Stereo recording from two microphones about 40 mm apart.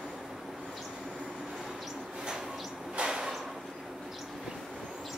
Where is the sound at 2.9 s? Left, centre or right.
Right.